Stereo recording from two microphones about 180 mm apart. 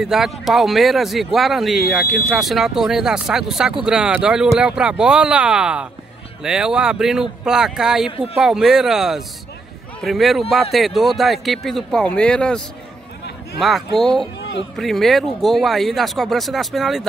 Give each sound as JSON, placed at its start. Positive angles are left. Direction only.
{"t": 0.0, "sound": "speech", "side_deg": 0}